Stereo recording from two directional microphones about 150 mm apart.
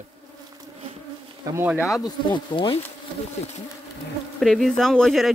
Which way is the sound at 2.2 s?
35° left (ahead or behind).